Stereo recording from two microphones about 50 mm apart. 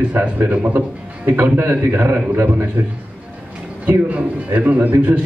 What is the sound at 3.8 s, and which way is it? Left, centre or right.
A man's voice, right.